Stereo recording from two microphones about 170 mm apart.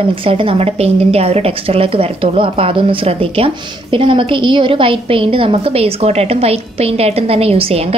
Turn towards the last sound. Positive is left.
turn(degrees=-35)  # may be behind; listen again after turning